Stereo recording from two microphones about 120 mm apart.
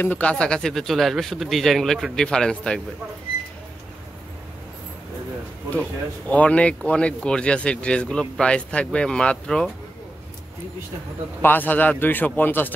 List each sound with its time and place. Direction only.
0.0 s speech: 15° left (ahead or behind)
5.7 s speech: 10° left (ahead or behind)
11.4 s speech: 15° left (ahead or behind)